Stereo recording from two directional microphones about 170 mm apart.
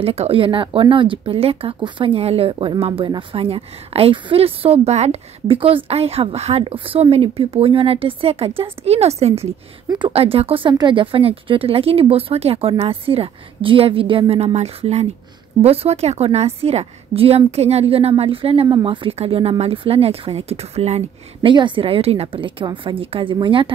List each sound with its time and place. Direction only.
0.0 s speech: 35° right (ahead or behind)
9.8 s speech: 25° right (ahead or behind)